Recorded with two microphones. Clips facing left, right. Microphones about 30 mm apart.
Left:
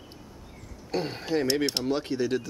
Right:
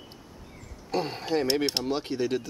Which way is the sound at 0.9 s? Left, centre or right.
Centre.